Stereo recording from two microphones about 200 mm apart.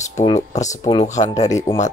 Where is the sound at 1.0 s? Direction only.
35° left (ahead or behind).